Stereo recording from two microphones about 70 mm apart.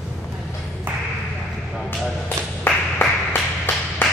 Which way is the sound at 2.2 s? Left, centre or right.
Left.